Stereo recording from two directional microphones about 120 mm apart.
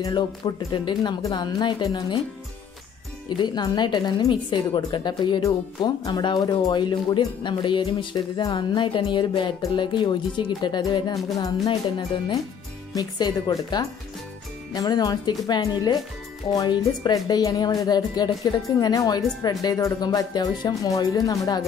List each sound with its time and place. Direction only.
0.0 s speech: 30° left (ahead or behind)
3.3 s speech: 35° left (ahead or behind)
5.4 s speech: 30° left (ahead or behind)
12.9 s speech: 30° left (ahead or behind)
14.7 s speech: 35° left (ahead or behind)